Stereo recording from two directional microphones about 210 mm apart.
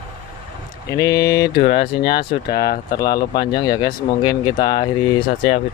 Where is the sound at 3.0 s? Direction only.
20° left (ahead or behind).